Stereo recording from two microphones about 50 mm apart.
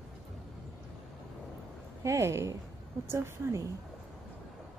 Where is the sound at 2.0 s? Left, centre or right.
Right.